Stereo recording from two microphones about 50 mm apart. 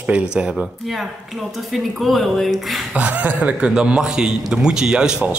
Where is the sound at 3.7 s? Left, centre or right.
Centre.